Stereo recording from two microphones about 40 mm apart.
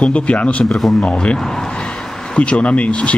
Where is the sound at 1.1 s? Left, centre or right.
Left.